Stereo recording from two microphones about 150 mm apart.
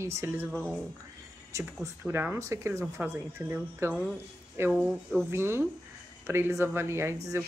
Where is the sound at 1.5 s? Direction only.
20° right (ahead or behind).